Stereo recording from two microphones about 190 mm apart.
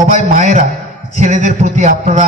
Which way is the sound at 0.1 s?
40° right (ahead or behind).